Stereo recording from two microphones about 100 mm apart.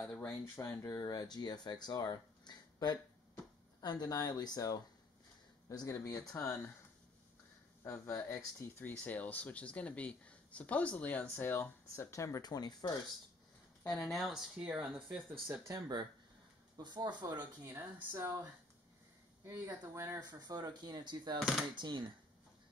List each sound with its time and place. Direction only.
0.2 s speech: 35° left (ahead or behind)
7.8 s speech: 30° left (ahead or behind)
8.9 s speech: 15° left (ahead or behind); by 12.4 s 30° left (ahead or behind)
12.4 s speech: 45° left (ahead or behind)
13.9 s speech: centre (ahead or behind)
15.4 s speech: 25° right (ahead or behind)
16.7 s speech: 45° right (ahead or behind)
17.4 s a woman's voice: 20° right (ahead or behind)
20.2 s speech: 40° right (ahead or behind)